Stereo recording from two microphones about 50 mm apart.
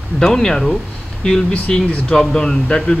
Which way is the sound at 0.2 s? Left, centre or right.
Centre.